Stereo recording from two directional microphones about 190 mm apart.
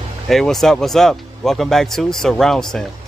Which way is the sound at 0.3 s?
Centre (ahead or behind).